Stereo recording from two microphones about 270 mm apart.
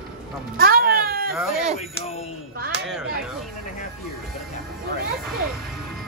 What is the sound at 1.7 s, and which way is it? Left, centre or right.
Speech, left.